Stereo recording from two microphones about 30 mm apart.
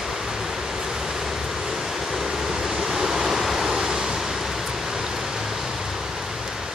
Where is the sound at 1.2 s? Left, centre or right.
Centre.